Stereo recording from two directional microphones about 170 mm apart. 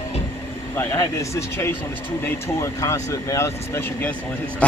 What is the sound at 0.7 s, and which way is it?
A man's voice, 15° left (ahead or behind).